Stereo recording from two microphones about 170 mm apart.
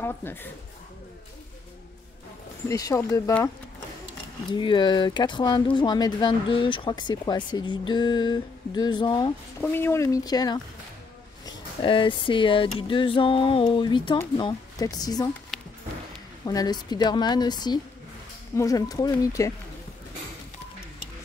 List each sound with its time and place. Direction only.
0.0 s speech: 10° left (ahead or behind)
2.7 s speech: 20° left (ahead or behind)
4.5 s speech: 30° left (ahead or behind)
9.6 s speech: 15° left (ahead or behind)
15.5 s music: centre (ahead or behind)
16.4 s speech: 25° left (ahead or behind)